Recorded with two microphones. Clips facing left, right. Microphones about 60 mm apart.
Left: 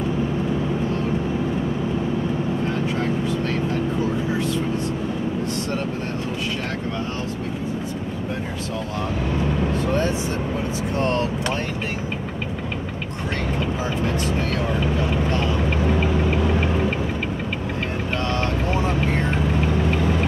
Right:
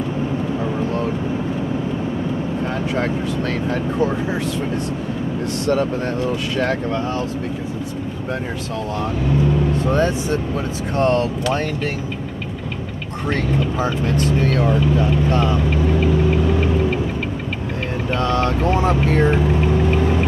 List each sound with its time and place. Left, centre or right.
18.9 s vehicle: right